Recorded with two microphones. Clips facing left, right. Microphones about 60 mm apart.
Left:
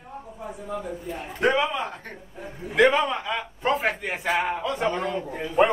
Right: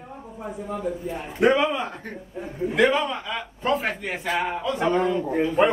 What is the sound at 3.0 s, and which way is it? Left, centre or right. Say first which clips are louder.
Speech: left 2 dB; centre.